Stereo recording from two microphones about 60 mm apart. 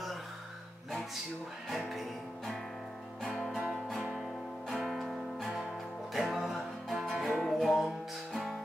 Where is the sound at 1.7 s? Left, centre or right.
Centre.